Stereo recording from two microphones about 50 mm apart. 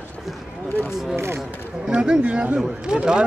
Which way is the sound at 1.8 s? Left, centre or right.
Centre.